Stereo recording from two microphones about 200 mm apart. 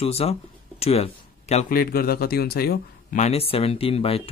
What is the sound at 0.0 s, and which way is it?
Speech, 30° left (ahead or behind).